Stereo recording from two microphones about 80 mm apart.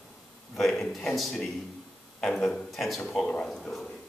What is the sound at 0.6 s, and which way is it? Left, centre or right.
A man's voice, centre.